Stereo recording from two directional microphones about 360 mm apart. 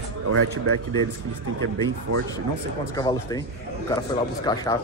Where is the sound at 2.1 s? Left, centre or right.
Right.